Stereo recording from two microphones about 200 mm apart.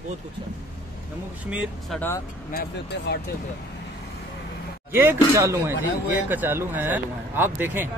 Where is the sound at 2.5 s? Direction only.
55° left (ahead or behind).